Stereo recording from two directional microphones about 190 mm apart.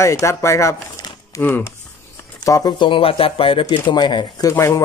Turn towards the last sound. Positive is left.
turn(degrees=15)  # may be behind; listen again after turning